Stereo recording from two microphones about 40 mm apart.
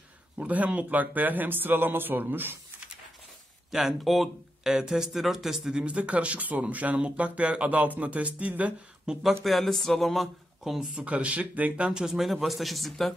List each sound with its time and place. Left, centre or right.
0.5 s speech: right
4.0 s speech: centre
4.6 s speech: centre
5.9 s speech: right
9.1 s speech: centre
9.4 s speech: centre
11.0 s speech: right
11.9 s speech: centre
12.2 s speech: centre